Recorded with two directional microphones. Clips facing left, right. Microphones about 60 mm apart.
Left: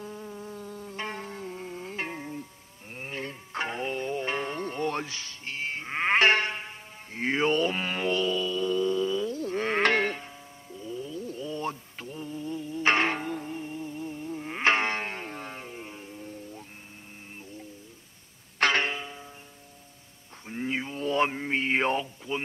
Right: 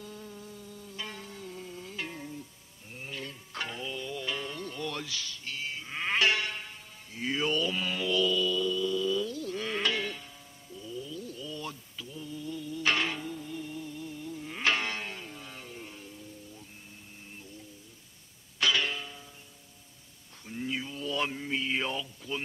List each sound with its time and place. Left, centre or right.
0.0 s insect: left
0.5 s music: left
7.2 s mantra: left
18.6 s music: left
20.4 s a sound: left